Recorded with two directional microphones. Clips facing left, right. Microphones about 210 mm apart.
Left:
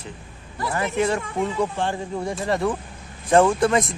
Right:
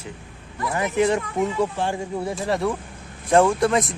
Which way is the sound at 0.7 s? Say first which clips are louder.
Right 2 dB; 15° right (ahead or behind).